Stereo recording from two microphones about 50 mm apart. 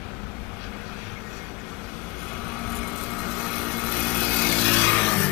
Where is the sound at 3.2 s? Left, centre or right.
Centre.